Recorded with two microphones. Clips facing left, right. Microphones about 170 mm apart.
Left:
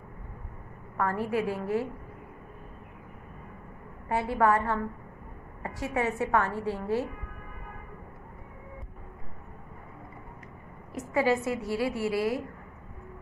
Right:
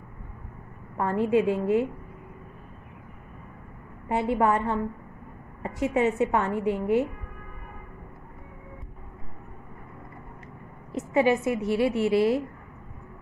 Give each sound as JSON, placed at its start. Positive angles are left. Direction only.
{"t": 0.9, "sound": "a woman's voice", "side_deg": -20}
{"t": 4.1, "sound": "a woman's voice", "side_deg": -20}
{"t": 10.9, "sound": "a woman's voice", "side_deg": -20}